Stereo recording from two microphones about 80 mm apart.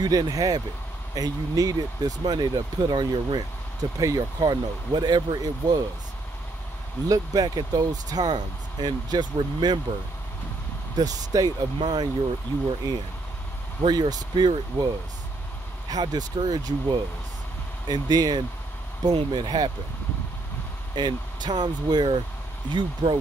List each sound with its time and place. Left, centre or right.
0.0 s speech: right
4.0 s speech: right
7.1 s speech: right
11.0 s speech: right
11.8 s speech: right
13.8 s speech: right
15.9 s speech: right
20.9 s speech: right
22.7 s speech: right